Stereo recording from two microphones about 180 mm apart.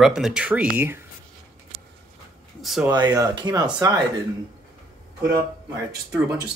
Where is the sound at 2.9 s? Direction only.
20° right (ahead or behind).